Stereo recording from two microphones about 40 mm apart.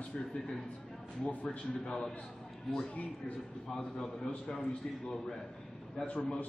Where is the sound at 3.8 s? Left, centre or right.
Left.